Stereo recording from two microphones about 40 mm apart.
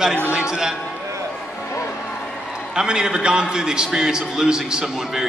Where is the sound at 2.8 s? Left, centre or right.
Centre.